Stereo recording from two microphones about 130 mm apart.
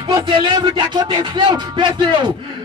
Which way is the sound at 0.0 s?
35° right (ahead or behind).